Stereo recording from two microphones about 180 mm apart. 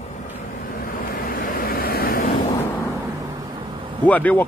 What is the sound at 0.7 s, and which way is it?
Waves, 50° left (ahead or behind).